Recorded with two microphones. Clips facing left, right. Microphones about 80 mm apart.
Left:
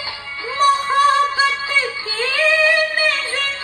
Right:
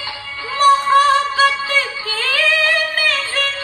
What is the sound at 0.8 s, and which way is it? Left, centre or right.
Music, left.